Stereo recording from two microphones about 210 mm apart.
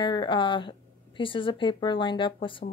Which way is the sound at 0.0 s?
20° left (ahead or behind).